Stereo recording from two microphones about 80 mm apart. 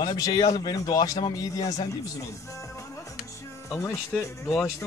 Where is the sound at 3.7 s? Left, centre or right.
Left.